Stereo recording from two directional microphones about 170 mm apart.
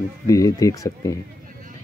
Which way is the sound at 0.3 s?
20° left (ahead or behind).